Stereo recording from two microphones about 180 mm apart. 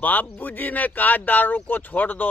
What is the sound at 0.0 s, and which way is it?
Speech, 10° left (ahead or behind).